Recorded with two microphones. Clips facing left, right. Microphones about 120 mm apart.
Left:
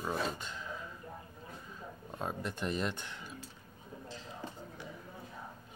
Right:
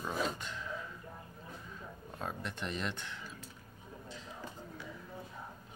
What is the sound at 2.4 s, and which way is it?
Speech, 40° left (ahead or behind).